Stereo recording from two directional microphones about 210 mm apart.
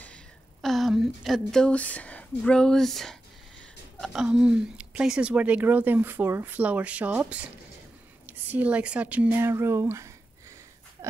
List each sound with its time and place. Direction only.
0.0 s speech: 5° left (ahead or behind); by 10.1 s 15° right (ahead or behind)